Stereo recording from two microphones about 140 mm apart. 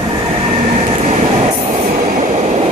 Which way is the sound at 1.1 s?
45° right (ahead or behind).